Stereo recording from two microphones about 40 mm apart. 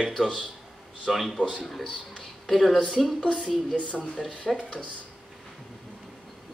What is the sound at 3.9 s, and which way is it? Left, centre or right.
Speech, centre.